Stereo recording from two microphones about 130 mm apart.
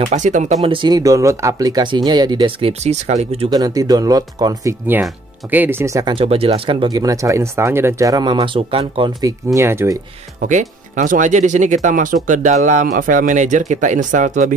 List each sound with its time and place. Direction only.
0.0 s speech: 65° right (ahead or behind)
0.7 s speech: 35° right (ahead or behind)
2.6 s speech: 60° right (ahead or behind)
3.4 s speech: 30° right (ahead or behind)
5.5 s speech: 15° right (ahead or behind)
6.0 s speech: 45° right (ahead or behind)
6.9 s speech: 30° right (ahead or behind)
9.2 s speech: 25° right (ahead or behind)
10.4 s speech: 75° right (ahead or behind)